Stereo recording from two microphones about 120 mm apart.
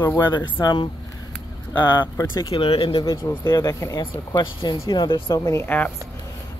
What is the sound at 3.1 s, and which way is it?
Speech, 30° left (ahead or behind).